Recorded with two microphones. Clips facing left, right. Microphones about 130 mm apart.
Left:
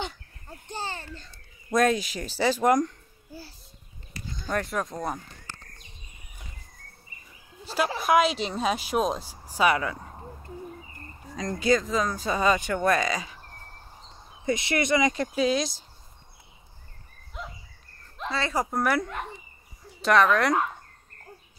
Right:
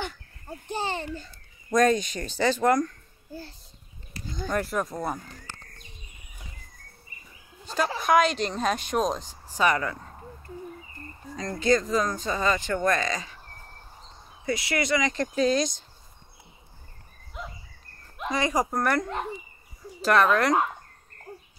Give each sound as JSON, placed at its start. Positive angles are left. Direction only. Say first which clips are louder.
{"t": 0.7, "sound": "a sound", "louder": "right 5 dB", "side_deg": -15}
{"t": 1.7, "sound": "a child's voice", "louder": "right 1 dB", "side_deg": 5}
{"t": 4.6, "sound": "speech", "louder": "right 1 dB", "side_deg": -5}
{"t": 7.6, "sound": "speech", "louder": "even", "side_deg": 5}
{"t": 11.3, "sound": "speech", "louder": "even", "side_deg": 15}
{"t": 11.7, "sound": "speech", "louder": "right 1 dB", "side_deg": 0}
{"t": 14.4, "sound": "speech", "louder": "left 2 dB", "side_deg": 25}
{"t": 15.1, "sound": "speech", "louder": "right 1 dB", "side_deg": 5}
{"t": 17.4, "sound": "insect", "louder": "even", "side_deg": 0}
{"t": 18.1, "sound": "speech", "louder": "right 2 dB", "side_deg": -15}
{"t": 18.7, "sound": "speech", "louder": "even", "side_deg": 5}